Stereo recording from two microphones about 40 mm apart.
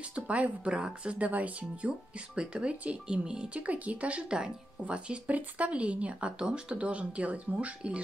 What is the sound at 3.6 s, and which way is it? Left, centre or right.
Speech, right.